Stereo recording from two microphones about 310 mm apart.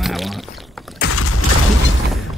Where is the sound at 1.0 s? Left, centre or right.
Left.